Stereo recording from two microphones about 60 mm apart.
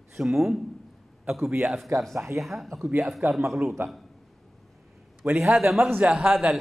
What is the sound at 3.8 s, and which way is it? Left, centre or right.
Speech, right.